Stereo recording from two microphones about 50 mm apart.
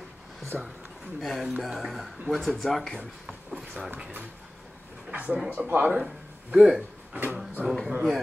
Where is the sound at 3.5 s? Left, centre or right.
Centre.